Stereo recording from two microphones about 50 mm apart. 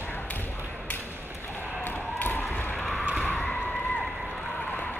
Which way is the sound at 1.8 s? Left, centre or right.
Left.